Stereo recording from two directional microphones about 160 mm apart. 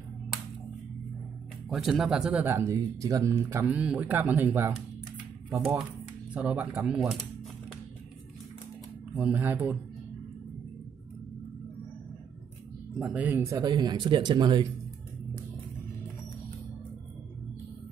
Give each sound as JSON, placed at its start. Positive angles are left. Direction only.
{"t": 1.7, "sound": "speech", "side_deg": 0}
{"t": 9.1, "sound": "speech", "side_deg": -10}
{"t": 12.9, "sound": "speech", "side_deg": -5}
{"t": 13.6, "sound": "speech", "side_deg": -25}